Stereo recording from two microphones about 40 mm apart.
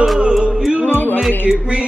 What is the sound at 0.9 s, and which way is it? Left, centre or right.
Music, left.